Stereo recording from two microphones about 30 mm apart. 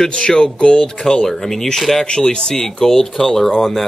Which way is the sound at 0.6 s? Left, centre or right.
Left.